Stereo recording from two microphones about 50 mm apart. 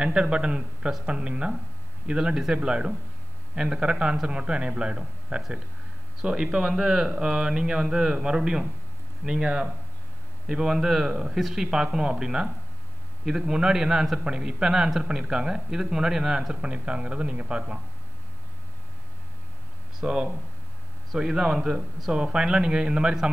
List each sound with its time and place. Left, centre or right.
0.0 s speech: centre
10.5 s speech: centre
20.0 s speech: centre